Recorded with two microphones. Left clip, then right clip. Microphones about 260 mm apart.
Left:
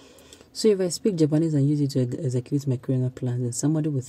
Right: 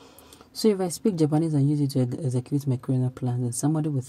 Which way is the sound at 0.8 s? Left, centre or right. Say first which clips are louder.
Left 2 dB; centre.